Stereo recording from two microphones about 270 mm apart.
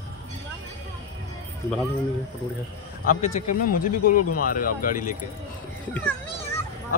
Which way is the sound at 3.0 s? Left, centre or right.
Left.